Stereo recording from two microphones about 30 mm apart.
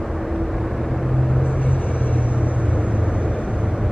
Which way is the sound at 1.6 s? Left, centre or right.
Left.